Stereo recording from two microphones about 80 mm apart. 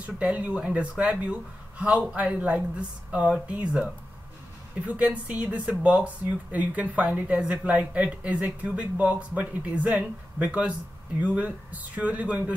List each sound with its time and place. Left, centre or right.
0.0 s speech: centre
4.8 s speech: centre